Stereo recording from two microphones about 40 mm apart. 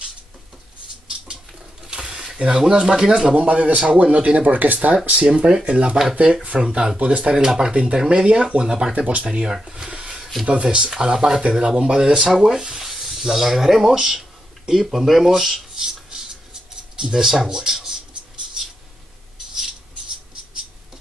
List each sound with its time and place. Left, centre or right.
1.9 s a sound: right
2.3 s speech: right
3.4 s speech: right
8.9 s speech: right
9.3 s speech: right
9.8 s a sound: right
10.4 s speech: right
10.9 s speech: centre
12.3 s speech: centre